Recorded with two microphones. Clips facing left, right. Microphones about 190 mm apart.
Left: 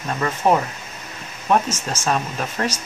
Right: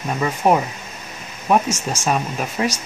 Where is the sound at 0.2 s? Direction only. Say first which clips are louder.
Right 1 dB; 10° right (ahead or behind).